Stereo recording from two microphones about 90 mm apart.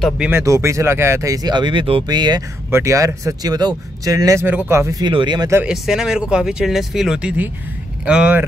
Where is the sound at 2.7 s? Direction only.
35° right (ahead or behind).